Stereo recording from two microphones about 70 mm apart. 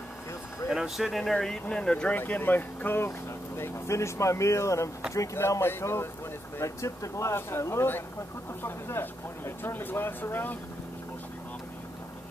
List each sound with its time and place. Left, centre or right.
0.7 s speech: centre
2.1 s speech: left
3.5 s speech: left